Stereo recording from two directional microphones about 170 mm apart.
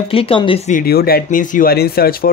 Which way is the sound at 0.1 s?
30° left (ahead or behind).